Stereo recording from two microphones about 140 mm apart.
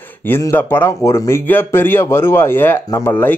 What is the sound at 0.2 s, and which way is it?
A man's voice, 20° left (ahead or behind).